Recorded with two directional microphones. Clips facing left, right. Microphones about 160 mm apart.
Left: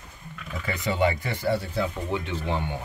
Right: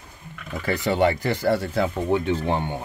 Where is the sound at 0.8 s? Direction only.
70° right (ahead or behind); by 1.9 s 85° right.